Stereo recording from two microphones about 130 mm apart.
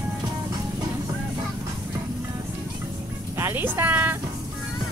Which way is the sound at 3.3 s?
15° right (ahead or behind).